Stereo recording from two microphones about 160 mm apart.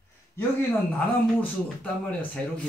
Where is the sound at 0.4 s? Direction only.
10° left (ahead or behind).